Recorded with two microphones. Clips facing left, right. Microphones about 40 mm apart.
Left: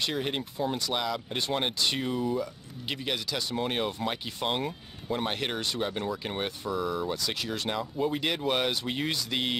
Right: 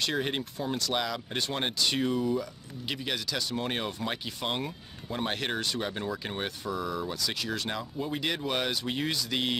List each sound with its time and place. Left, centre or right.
0.1 s speech: centre
3.3 s speech: left
3.6 s speech: centre